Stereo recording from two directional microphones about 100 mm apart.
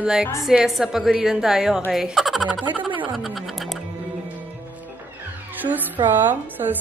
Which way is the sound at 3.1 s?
Centre (ahead or behind).